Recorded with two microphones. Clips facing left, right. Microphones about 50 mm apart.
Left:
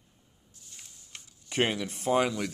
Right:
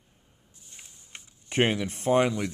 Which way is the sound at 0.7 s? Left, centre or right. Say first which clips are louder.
Right 2 dB; right.